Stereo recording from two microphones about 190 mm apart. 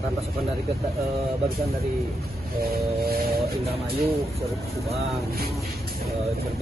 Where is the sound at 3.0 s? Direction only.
55° right (ahead or behind).